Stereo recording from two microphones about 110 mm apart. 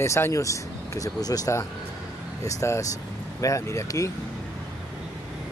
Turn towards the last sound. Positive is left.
turn(degrees=30)  # may be behind; listen again after turning